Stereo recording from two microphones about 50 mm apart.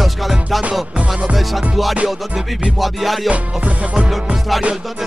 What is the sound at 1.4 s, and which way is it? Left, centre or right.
Music, centre.